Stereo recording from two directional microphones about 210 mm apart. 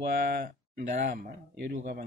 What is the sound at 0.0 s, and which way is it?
Speech, 45° right (ahead or behind).